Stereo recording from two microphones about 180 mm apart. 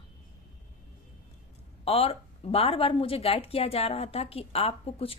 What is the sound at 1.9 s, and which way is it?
Speech, 30° left (ahead or behind).